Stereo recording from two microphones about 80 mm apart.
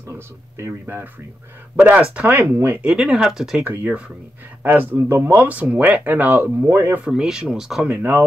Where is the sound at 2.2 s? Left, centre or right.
Right.